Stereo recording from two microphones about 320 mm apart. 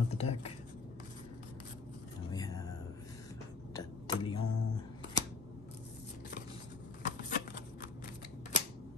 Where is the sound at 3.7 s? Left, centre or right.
Centre.